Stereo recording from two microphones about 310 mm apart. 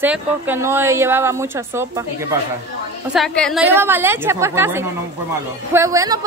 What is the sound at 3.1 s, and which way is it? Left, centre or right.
A woman's voice, centre.